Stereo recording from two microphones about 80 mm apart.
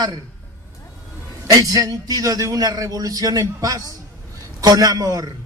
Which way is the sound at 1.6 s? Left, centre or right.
Right.